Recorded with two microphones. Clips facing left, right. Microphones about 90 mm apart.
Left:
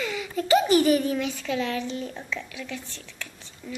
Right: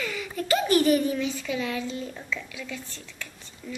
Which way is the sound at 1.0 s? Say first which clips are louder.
Even; 5° right (ahead or behind).